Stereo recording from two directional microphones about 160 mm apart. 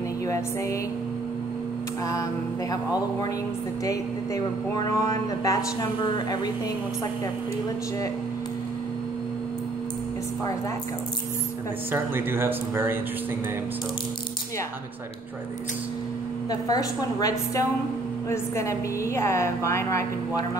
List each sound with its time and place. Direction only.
2.7 s speech: 25° left (ahead or behind)
5.0 s speech: 20° left (ahead or behind)
11.9 s speech: 15° right (ahead or behind)
16.4 s a woman's voice: 25° left (ahead or behind)